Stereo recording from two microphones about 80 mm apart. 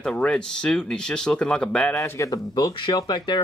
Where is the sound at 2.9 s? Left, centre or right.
Left.